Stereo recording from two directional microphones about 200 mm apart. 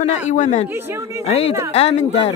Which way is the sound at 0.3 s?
35° left (ahead or behind).